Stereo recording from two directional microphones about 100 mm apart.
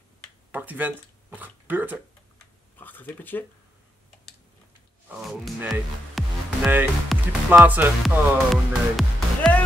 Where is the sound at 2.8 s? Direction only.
20° left (ahead or behind).